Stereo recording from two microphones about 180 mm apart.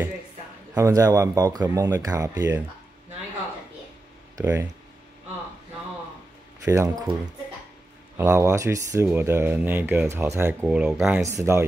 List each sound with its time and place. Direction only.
0.7 s speech: 15° right (ahead or behind)
4.4 s speech: 15° right (ahead or behind)
6.6 s speech: 15° right (ahead or behind)
8.2 s speech: 15° right (ahead or behind)
11.2 s speech: 15° right (ahead or behind)